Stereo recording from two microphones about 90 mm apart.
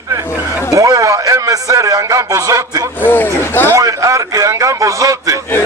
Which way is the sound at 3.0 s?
20° left (ahead or behind).